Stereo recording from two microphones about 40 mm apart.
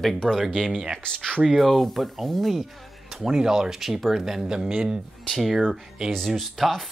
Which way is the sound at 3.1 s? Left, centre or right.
Centre.